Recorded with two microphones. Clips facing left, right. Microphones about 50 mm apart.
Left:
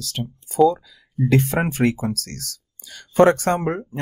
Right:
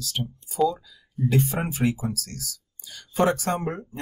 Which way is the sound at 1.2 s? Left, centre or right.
Left.